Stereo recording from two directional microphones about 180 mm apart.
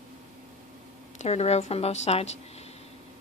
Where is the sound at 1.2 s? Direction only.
35° left (ahead or behind).